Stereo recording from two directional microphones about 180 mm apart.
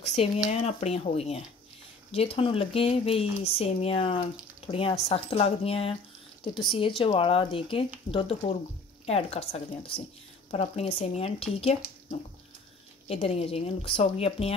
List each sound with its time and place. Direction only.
0.0 s speech: 35° left (ahead or behind)
13.1 s speech: 35° left (ahead or behind)